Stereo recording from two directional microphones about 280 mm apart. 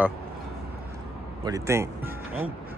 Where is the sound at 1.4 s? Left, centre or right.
Centre.